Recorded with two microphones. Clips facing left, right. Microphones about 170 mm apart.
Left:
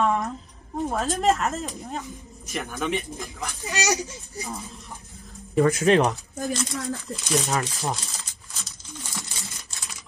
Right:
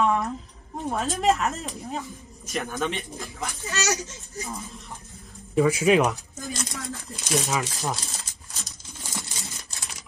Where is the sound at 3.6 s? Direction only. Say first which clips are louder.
Left 3 dB; 15° left (ahead or behind).